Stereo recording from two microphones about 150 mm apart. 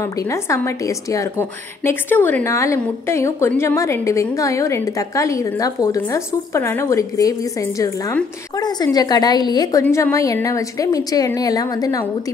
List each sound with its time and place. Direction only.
0.0 s a woman's voice: 20° left (ahead or behind)